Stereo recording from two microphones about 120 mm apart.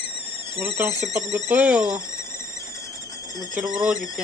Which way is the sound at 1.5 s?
10° right (ahead or behind).